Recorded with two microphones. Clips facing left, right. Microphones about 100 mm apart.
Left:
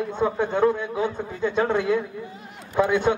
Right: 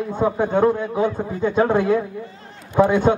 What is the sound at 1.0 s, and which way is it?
A man's voice, 40° right (ahead or behind).